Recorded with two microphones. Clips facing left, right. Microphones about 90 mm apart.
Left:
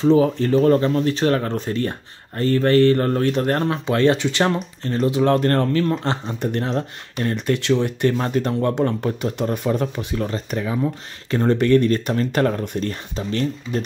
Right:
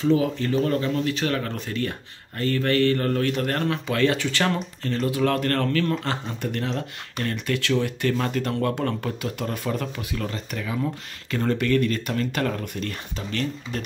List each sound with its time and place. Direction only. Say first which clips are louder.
0.0 s speech: left 5 dB; 35° left (ahead or behind)